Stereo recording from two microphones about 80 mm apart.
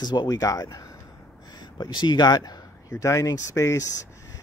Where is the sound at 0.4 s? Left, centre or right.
Left.